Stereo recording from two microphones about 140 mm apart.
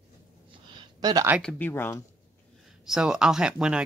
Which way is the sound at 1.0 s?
25° right (ahead or behind).